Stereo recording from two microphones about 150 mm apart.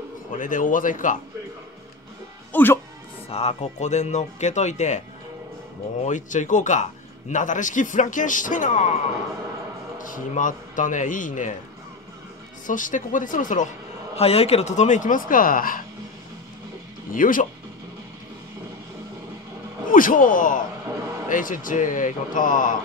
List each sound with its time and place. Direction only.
0.4 s speech: 60° left (ahead or behind)
2.5 s speech: 15° left (ahead or behind)
3.3 s speech: 45° left (ahead or behind)
6.0 s speech: 55° left (ahead or behind)
10.1 s speech: 60° left (ahead or behind)
12.6 s speech: 60° left (ahead or behind)
14.1 s speech: 40° left (ahead or behind); by 15.8 s 70° left (ahead or behind)
17.1 s speech: 65° left (ahead or behind)
19.9 s speech: 65° left (ahead or behind)